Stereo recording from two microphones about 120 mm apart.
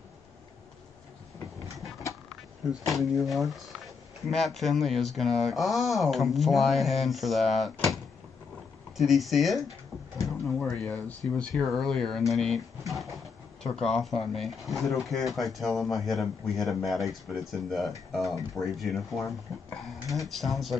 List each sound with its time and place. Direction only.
2.9 s speech: centre (ahead or behind)
10.2 s drawer open or close: centre (ahead or behind)
10.8 s speech: 10° left (ahead or behind)